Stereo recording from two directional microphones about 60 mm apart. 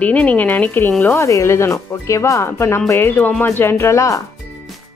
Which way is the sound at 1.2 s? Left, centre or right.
Left.